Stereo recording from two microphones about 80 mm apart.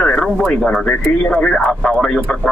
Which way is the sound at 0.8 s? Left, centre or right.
Centre.